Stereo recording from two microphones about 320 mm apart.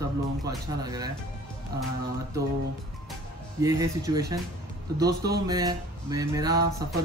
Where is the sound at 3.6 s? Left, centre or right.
Centre.